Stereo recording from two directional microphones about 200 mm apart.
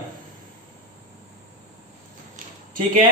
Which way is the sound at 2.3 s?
40° right (ahead or behind).